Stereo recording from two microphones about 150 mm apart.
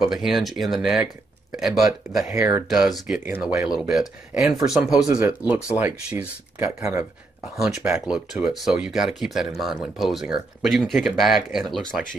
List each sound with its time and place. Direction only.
0.0 s speech: centre (ahead or behind)
3.3 s speech: 15° right (ahead or behind)
7.5 s speech: 5° right (ahead or behind)